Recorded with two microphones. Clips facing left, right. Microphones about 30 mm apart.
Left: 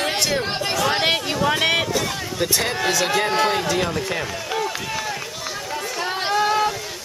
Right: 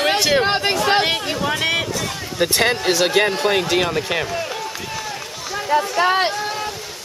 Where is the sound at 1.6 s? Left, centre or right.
Centre.